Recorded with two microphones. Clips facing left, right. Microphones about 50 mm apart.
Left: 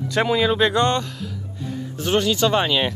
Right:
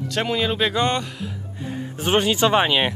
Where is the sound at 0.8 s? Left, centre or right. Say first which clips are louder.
Left 2 dB; centre.